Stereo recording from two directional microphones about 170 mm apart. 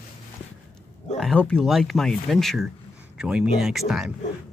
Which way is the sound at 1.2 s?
5° left (ahead or behind).